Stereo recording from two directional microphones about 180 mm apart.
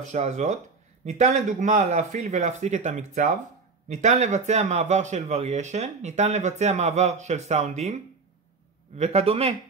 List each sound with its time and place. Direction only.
0.1 s speech: 40° right (ahead or behind)